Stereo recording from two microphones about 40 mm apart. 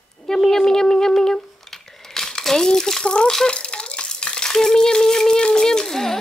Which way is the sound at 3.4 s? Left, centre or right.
Left.